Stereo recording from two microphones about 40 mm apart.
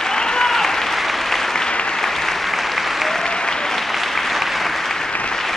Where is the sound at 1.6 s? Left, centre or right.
Left.